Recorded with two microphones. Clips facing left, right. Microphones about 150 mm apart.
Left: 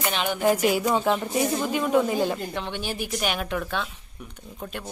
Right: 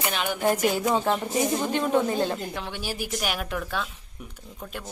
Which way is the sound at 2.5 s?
5° right (ahead or behind).